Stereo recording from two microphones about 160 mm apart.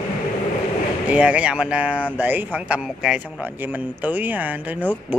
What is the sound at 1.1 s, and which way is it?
Speech, 5° right (ahead or behind).